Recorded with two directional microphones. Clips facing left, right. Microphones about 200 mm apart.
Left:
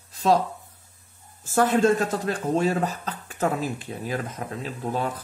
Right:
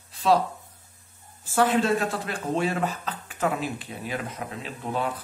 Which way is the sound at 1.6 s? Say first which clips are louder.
Left 2 dB; 45° left (ahead or behind).